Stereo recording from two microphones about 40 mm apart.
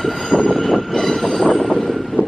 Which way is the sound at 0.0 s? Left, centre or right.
Centre.